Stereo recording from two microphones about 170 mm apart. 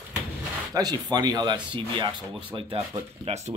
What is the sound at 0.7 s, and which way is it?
Speech, 25° right (ahead or behind).